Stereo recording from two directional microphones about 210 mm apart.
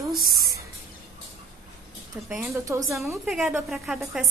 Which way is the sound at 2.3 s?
15° right (ahead or behind).